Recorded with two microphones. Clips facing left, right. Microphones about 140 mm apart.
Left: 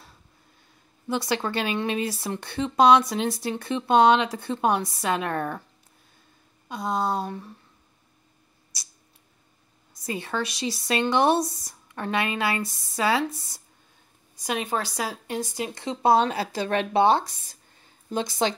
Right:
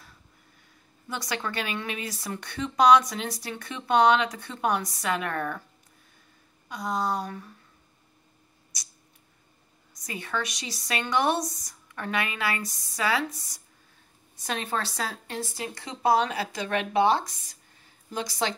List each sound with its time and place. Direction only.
1.0 s speech: 25° left (ahead or behind)
6.7 s speech: 25° left (ahead or behind)
10.0 s speech: 30° left (ahead or behind)
14.3 s speech: 10° left (ahead or behind)